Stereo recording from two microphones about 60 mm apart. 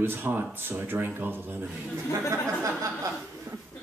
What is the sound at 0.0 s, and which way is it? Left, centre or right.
Speech, right.